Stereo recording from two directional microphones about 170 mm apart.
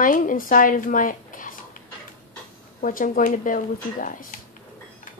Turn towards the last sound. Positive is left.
turn(degrees=50)  # may be behind; listen again after turning